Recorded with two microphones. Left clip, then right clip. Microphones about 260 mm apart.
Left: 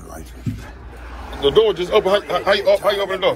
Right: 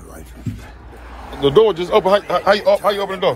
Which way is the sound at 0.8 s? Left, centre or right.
Right.